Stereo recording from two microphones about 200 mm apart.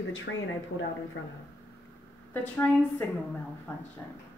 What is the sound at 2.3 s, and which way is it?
A woman's voice, 10° left (ahead or behind).